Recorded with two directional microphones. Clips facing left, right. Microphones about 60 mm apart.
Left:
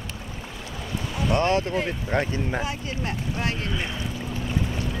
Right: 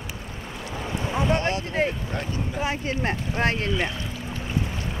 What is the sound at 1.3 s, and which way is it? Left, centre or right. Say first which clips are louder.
Speech: left 4 dB; left.